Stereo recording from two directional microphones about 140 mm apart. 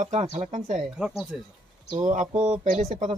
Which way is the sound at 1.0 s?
10° right (ahead or behind).